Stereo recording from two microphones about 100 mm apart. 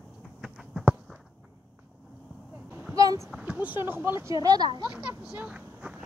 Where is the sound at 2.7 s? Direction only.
20° right (ahead or behind).